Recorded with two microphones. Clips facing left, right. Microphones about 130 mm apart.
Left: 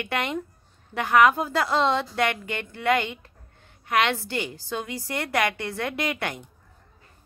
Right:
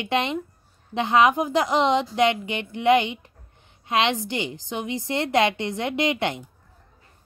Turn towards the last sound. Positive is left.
turn(degrees=-20)  # may be behind; listen again after turning